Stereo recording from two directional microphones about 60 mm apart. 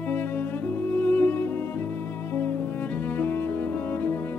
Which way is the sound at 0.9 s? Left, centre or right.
Left.